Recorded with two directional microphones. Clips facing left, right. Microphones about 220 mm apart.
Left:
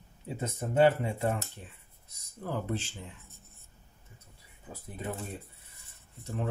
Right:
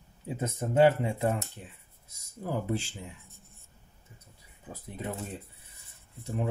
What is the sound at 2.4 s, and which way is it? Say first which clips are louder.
Speech: right 2 dB; 10° right (ahead or behind).